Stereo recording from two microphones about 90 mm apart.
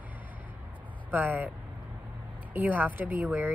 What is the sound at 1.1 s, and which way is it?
Speech, 20° right (ahead or behind).